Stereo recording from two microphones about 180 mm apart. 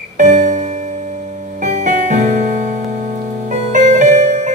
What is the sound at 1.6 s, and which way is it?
Music, 45° right (ahead or behind).